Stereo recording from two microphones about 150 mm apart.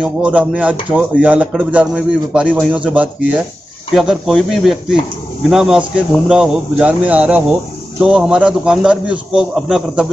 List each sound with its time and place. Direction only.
0.0 s a man's voice: 5° right (ahead or behind)